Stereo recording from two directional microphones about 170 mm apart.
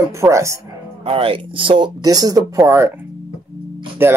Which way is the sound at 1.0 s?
35° right (ahead or behind).